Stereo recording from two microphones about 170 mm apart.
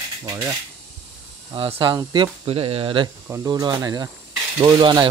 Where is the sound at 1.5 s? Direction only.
30° right (ahead or behind).